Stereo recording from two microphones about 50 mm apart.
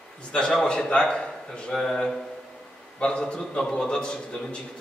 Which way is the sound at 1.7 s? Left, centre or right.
Centre.